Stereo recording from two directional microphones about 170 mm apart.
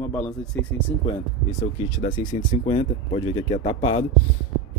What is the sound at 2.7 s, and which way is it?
Speech, 35° left (ahead or behind).